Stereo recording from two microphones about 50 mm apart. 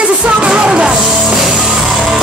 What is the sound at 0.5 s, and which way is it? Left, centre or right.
Music, centre.